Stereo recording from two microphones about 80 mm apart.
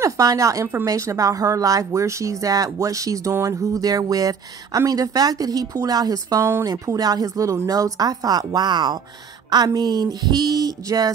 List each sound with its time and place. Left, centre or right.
0.0 s speech: right